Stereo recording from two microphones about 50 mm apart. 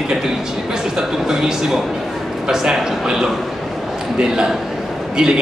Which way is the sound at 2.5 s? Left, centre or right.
Centre.